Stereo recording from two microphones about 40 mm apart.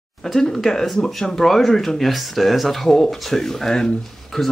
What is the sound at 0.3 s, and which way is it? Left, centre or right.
Speech, centre.